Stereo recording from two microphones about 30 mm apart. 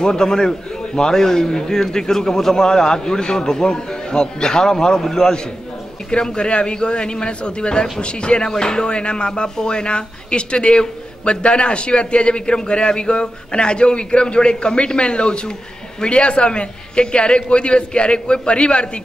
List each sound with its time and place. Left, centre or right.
0.0 s a man's voice: left
6.0 s speech: left
8.5 s speech: left